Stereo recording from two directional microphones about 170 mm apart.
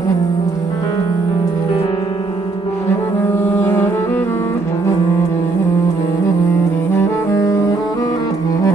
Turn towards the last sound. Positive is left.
turn(degrees=20)  # may be behind; listen again after turning